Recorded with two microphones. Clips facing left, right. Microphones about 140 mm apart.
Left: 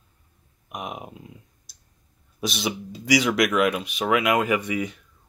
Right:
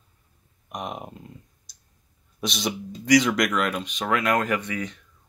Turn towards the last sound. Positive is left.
turn(degrees=10)  # may be behind; listen again after turning